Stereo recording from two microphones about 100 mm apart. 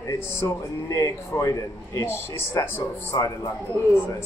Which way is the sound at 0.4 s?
35° left (ahead or behind).